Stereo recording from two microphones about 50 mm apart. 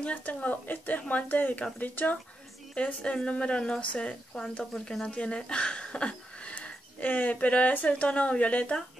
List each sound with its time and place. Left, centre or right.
0.0 s speech: left
2.7 s speech: left